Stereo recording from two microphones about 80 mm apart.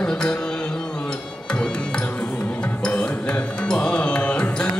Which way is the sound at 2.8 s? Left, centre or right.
Centre.